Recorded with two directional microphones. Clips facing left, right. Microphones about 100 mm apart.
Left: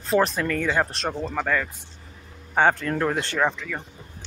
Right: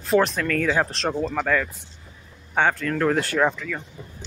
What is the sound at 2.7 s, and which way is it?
Speech, 20° left (ahead or behind).